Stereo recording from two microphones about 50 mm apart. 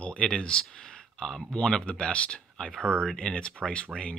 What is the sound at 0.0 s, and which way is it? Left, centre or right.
Speech, left.